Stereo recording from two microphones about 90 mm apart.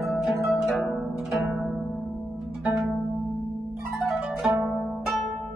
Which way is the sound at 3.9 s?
5° right (ahead or behind).